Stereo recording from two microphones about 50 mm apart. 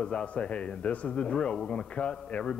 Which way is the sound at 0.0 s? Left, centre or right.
Left.